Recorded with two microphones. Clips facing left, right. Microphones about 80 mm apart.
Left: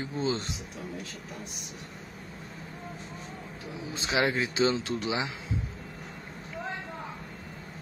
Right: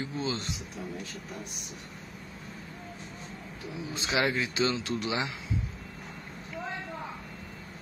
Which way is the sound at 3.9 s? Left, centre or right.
Left.